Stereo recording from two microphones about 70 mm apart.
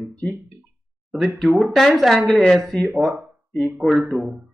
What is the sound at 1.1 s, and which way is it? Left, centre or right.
Speech, centre.